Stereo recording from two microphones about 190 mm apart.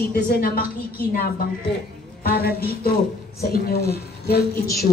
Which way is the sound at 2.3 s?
55° left (ahead or behind).